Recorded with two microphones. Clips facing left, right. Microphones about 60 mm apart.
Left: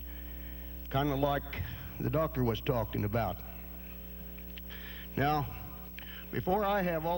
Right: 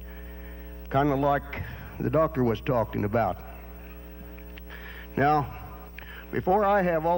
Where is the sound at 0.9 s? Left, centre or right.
Right.